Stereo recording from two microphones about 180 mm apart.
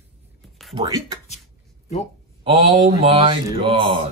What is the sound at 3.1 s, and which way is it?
Speech, 30° right (ahead or behind).